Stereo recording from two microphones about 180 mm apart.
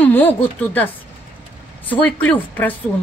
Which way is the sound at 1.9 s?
10° left (ahead or behind).